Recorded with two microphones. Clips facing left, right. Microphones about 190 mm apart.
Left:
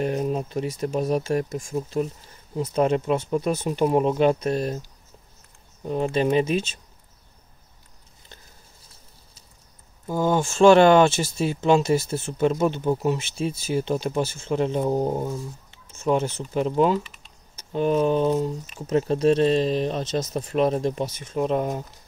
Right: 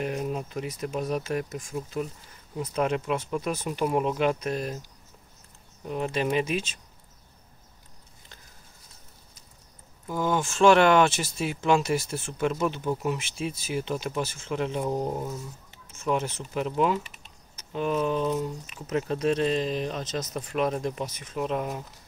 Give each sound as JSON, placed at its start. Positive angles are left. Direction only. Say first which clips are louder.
{"t": 0.0, "sound": "speech", "louder": "left 5 dB", "side_deg": 35}
{"t": 5.9, "sound": "speech", "louder": "left 5 dB", "side_deg": 30}
{"t": 10.0, "sound": "speech", "louder": "left 4 dB", "side_deg": 30}